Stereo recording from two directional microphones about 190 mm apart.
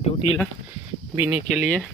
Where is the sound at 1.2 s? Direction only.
10° right (ahead or behind).